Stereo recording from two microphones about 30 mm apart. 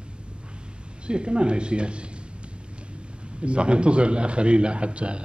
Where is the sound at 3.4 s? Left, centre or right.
Right.